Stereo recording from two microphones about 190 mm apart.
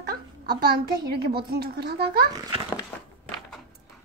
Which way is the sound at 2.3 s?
20° right (ahead or behind).